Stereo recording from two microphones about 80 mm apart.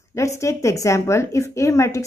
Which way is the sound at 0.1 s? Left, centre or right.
Left.